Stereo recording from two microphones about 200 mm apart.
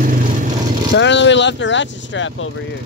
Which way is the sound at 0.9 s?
65° left (ahead or behind).